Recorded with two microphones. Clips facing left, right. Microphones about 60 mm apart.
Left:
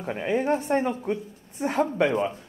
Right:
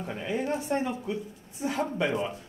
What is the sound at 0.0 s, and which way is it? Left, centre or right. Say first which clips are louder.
Speech: left 5 dB; left.